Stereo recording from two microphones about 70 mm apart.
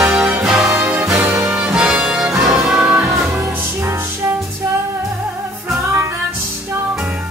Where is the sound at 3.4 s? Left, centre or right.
Right.